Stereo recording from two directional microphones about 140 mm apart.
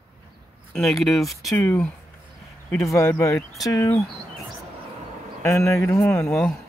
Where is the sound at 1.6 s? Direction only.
15° left (ahead or behind).